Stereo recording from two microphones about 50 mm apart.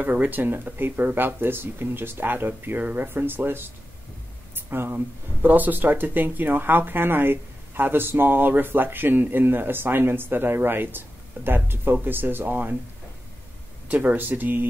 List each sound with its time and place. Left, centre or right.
0.1 s speech: right
0.7 s speech: right
2.8 s speech: right
3.1 s speech: right
13.8 s speech: right